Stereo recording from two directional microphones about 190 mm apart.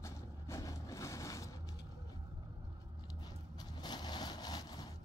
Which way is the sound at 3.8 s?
20° left (ahead or behind).